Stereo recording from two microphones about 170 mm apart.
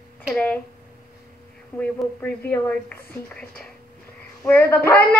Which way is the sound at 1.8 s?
5° left (ahead or behind).